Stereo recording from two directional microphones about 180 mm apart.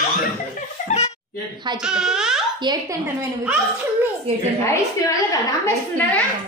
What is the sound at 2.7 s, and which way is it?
Speech, 25° right (ahead or behind).